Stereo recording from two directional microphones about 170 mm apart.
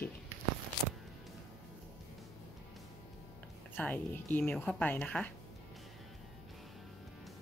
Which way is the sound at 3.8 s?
10° left (ahead or behind).